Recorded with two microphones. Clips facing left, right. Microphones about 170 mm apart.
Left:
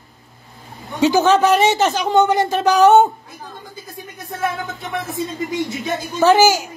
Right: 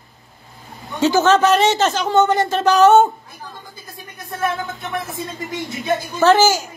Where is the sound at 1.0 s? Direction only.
15° left (ahead or behind).